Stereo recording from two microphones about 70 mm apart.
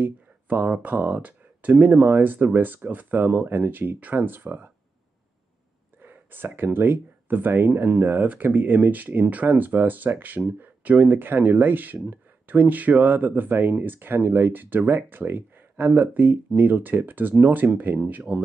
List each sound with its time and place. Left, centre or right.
0.0 s speech: right
6.0 s speech: right